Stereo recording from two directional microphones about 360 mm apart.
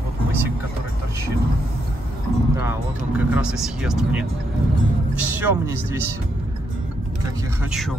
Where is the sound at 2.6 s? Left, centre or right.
Centre.